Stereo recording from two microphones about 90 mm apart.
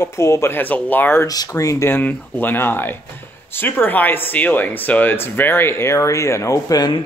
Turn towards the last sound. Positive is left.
turn(degrees=40)  # may be behind; listen again after turning